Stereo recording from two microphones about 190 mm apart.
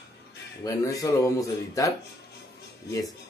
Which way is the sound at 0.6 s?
20° left (ahead or behind).